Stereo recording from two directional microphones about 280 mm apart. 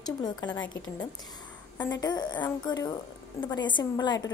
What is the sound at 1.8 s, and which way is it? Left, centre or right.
A woman's voice, centre.